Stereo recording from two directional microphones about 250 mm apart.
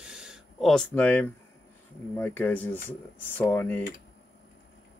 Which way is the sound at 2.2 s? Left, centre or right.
Centre.